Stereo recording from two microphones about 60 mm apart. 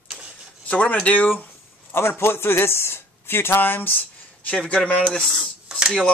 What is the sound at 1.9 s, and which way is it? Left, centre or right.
A man's voice, left.